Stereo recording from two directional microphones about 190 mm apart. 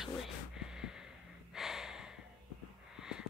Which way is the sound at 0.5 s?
5° right (ahead or behind).